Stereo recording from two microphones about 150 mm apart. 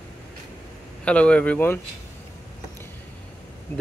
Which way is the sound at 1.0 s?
10° left (ahead or behind).